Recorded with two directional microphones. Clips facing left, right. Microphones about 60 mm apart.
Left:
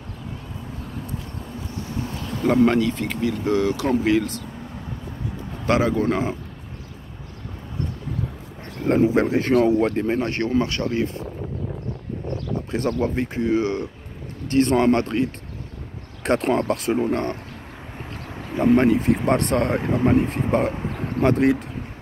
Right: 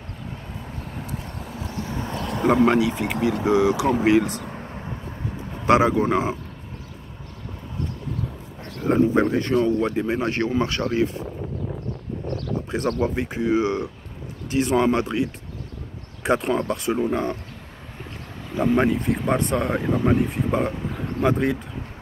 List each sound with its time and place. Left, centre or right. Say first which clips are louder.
1.8 s vehicle: even; right
2.4 s speech: even; centre
4.6 s vehicle: right 1 dB; right
5.7 s speech: right 2 dB; right
8.8 s a sound: left 1 dB; centre
9.5 s speech: left 3 dB; left
9.8 s speech: left 2 dB; centre
10.2 s speech: left 1 dB; right
12.7 s speech: left 1 dB; centre
14.5 s speech: left 2 dB; centre
18.5 s speech: left 3 dB; centre